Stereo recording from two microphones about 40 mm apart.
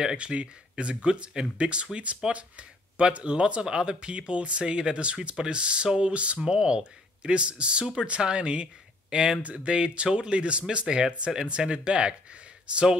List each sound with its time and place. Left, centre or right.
0.0 s speech: centre
7.8 s speech: centre
8.2 s speech: right
9.4 s speech: right